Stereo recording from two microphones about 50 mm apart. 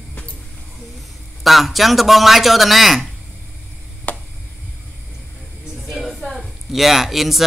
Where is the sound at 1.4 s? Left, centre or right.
Centre.